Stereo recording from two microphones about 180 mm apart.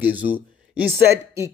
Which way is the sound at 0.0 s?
10° right (ahead or behind).